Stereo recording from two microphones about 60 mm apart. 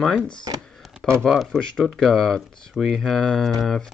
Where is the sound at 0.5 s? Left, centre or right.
Right.